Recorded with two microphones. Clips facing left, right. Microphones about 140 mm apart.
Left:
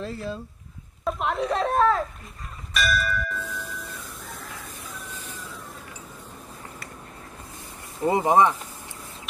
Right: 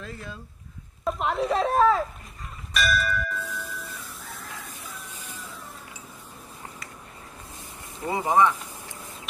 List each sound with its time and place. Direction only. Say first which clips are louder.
0.0 s speech: left 7 dB; 30° left (ahead or behind)
1.0 s speech: even; centre (ahead or behind)
2.7 s church bell: even; centre (ahead or behind)
3.4 s music: left 1 dB; 5° right (ahead or behind)
5.1 s a sound: left 3 dB; 10° right (ahead or behind)
8.0 s speech: left 3 dB; 20° left (ahead or behind)